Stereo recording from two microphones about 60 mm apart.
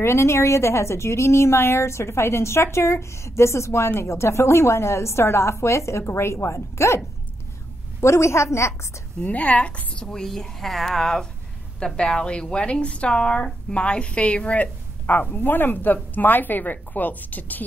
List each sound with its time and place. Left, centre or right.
0.0 s a woman's voice: left
8.0 s a woman's voice: left
9.2 s a woman's voice: left